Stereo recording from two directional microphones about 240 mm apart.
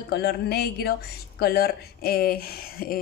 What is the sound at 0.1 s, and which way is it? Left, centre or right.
A woman's voice, left.